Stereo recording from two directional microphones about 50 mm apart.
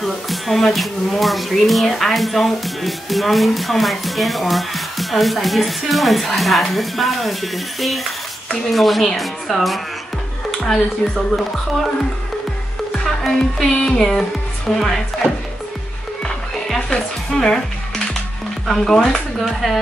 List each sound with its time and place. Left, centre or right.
0.0 s speech: centre
11.0 s speech: left
11.3 s music: centre
16.6 s music: centre
19.4 s speech: centre